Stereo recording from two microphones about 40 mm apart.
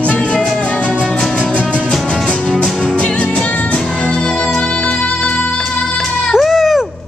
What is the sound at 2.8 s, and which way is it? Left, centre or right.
Music, left.